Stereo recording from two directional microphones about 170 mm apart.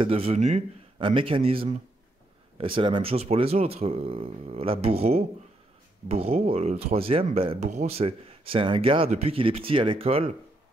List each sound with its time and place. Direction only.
0.0 s speech: 35° right (ahead or behind)
0.9 s speech: 30° right (ahead or behind)